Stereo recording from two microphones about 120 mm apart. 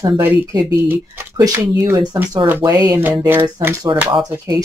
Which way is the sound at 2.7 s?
35° right (ahead or behind).